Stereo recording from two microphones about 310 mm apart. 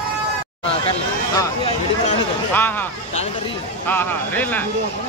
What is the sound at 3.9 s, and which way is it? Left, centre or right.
Speech, centre.